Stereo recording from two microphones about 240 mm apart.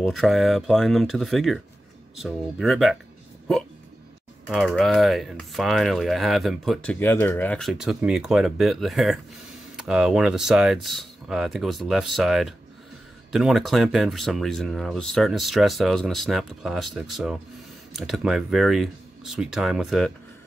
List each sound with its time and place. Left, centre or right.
0.0 s speech: centre
4.5 s speech: centre